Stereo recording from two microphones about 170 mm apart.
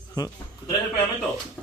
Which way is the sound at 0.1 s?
20° left (ahead or behind).